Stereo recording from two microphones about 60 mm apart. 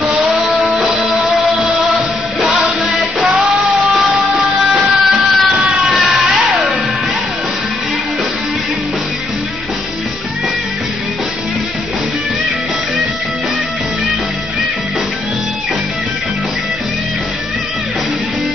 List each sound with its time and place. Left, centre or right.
0.7 s music: centre
2.4 s music: centre
4.6 s a sound: centre